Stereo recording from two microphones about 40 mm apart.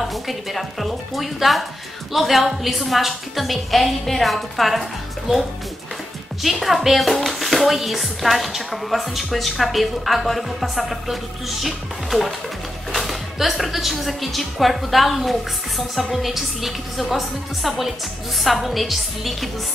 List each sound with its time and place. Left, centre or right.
0.1 s speech: centre
5.3 s speech: centre